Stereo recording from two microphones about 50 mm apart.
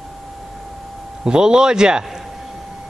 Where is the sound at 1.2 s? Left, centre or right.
Centre.